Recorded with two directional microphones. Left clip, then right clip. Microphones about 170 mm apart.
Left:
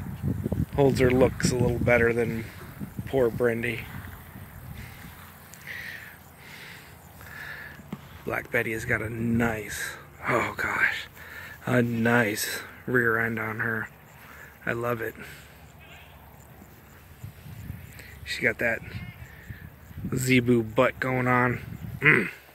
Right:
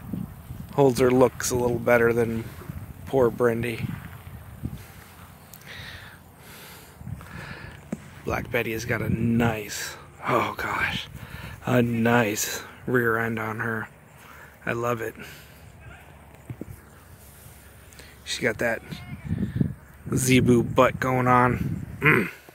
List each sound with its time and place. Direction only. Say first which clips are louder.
0.7 s speech: right 3 dB; 15° right (ahead or behind)
5.7 s a sound: left 3 dB; 20° right (ahead or behind)
8.3 s speech: right 1 dB; 15° right (ahead or behind)
18.2 s speech: even; 10° right (ahead or behind)
20.2 s speech: right 2 dB; 15° right (ahead or behind)